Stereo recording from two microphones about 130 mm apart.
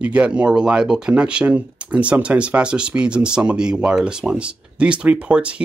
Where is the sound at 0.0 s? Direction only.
10° right (ahead or behind).